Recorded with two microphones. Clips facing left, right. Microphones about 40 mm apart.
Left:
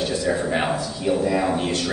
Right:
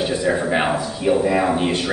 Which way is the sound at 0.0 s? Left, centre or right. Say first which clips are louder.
Right 3 dB; right.